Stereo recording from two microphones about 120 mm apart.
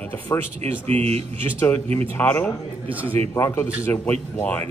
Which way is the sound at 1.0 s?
60° right (ahead or behind).